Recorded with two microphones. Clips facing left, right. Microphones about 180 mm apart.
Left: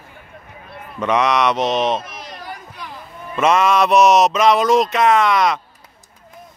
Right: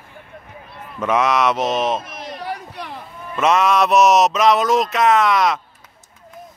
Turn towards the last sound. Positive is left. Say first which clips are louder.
# left 1 dB
turn(degrees=0)  # may be behind; listen again after turning